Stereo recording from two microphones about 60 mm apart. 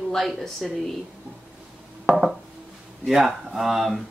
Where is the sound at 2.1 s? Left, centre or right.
Centre.